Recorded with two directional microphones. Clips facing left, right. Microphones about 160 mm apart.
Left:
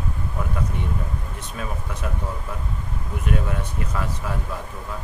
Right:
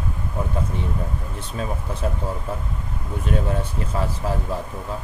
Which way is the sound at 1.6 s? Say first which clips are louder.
Right 4 dB; 30° right (ahead or behind).